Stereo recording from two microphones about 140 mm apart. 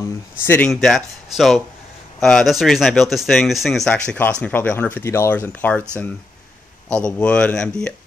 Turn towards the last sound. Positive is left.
turn(degrees=5)  # may be behind; listen again after turning